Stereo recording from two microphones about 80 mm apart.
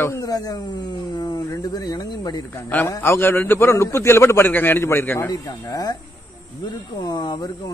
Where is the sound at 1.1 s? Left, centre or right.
Left.